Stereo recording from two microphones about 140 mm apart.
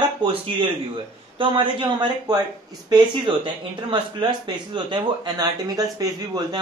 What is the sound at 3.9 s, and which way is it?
Speech, 35° right (ahead or behind).